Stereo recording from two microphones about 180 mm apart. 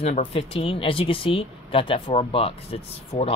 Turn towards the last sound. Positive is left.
turn(degrees=35)  # may be behind; listen again after turning